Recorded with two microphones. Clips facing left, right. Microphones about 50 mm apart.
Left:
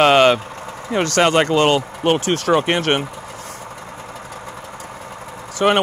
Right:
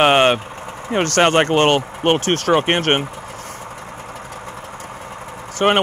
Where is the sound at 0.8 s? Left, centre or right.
Right.